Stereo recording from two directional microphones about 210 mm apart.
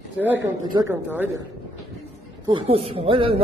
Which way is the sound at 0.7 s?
15° right (ahead or behind).